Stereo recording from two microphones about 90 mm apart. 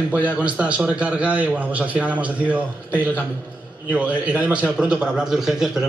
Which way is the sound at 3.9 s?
15° right (ahead or behind).